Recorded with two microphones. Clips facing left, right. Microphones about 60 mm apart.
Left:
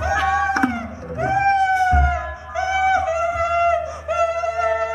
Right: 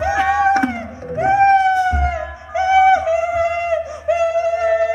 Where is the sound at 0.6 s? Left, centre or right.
Right.